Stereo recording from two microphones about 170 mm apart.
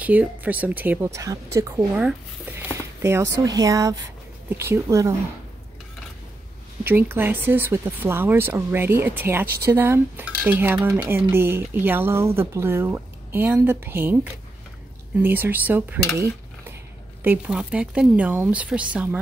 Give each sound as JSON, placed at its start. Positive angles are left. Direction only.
{"t": 0.0, "sound": "speech", "side_deg": -10}
{"t": 2.0, "sound": "speech", "side_deg": -10}
{"t": 6.9, "sound": "speech", "side_deg": -10}
{"t": 17.2, "sound": "speech", "side_deg": -10}